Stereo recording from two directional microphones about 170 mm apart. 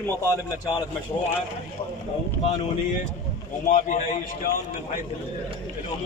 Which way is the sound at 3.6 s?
50° left (ahead or behind).